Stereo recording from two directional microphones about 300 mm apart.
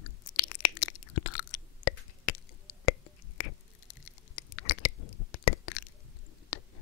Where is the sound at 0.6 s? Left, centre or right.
Left.